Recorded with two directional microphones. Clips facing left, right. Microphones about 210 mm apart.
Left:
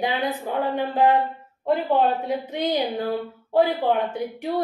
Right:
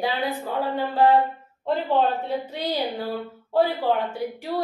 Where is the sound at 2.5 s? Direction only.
20° left (ahead or behind).